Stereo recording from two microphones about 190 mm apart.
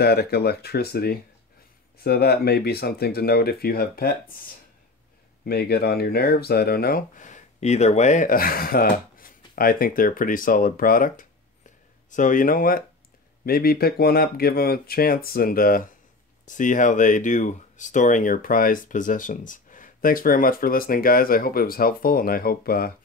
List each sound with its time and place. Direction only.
0.0 s speech: 55° left (ahead or behind)